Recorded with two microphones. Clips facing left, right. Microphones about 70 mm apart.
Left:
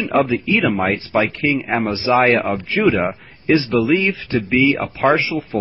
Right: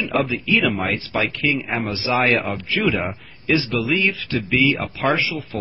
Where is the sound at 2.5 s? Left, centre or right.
Left.